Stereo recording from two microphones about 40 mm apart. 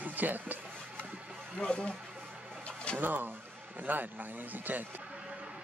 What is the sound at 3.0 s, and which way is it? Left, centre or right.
Speech, right.